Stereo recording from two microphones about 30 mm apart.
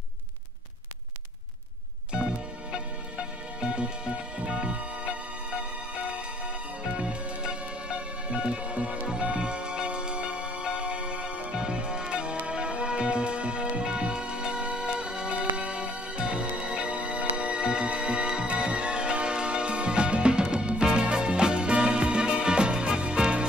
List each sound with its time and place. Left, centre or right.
2.2 s music: right
9.0 s music: right